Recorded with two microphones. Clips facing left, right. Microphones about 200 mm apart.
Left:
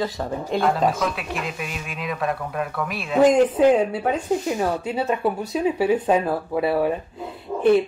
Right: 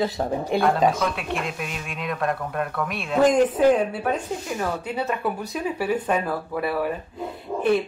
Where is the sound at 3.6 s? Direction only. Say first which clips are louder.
Left 2 dB; 20° left (ahead or behind).